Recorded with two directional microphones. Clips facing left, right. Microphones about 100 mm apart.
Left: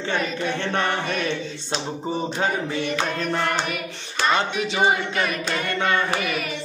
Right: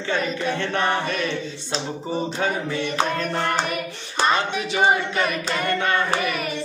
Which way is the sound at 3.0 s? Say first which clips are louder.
Right 1 dB; 40° right (ahead or behind).